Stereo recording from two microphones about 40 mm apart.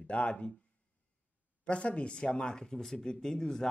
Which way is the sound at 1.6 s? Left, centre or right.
Left.